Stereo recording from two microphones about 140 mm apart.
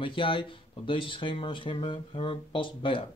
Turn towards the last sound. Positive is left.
turn(degrees=40)  # may be behind; listen again after turning